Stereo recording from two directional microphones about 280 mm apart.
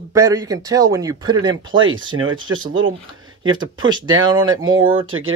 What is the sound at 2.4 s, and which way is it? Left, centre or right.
Speech, centre.